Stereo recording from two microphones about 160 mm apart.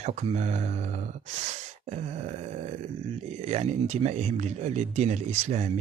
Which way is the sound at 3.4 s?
45° right (ahead or behind).